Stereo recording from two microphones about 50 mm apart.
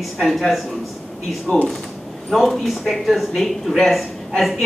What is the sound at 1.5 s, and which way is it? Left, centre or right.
Speech, left.